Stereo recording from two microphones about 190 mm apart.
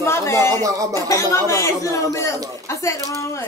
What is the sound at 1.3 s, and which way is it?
Speech, 15° left (ahead or behind).